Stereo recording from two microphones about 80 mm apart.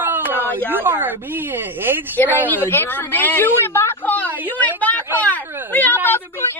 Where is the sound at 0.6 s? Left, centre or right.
Right.